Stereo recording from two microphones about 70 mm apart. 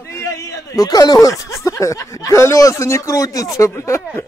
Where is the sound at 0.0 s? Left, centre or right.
Left.